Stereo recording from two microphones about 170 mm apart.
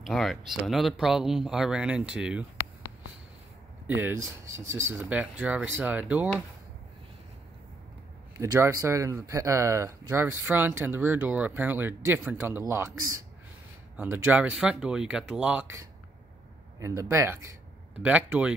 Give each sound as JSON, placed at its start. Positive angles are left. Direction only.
{"t": 0.0, "sound": "speech", "side_deg": 0}
{"t": 3.8, "sound": "speech", "side_deg": -15}
{"t": 8.4, "sound": "speech", "side_deg": -15}
{"t": 16.8, "sound": "speech", "side_deg": -20}